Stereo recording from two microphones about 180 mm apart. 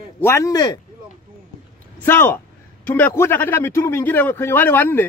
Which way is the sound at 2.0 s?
10° left (ahead or behind).